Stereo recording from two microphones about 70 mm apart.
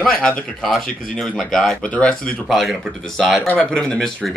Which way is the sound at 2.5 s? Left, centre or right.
Centre.